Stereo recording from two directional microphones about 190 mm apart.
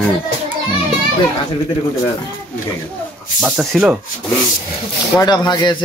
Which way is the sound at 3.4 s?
5° right (ahead or behind).